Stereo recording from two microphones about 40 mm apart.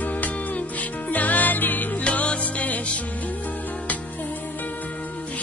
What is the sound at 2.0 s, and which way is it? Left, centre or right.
Music, left.